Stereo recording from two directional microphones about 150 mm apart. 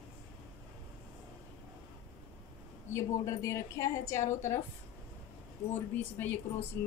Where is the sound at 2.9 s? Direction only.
20° left (ahead or behind).